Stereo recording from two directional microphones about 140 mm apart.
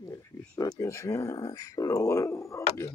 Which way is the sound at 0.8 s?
20° left (ahead or behind).